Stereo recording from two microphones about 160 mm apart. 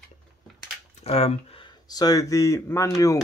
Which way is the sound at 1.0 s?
40° left (ahead or behind).